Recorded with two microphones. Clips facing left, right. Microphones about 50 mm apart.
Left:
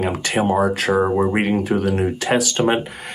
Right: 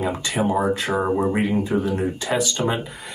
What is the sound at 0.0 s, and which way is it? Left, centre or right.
Speech, left.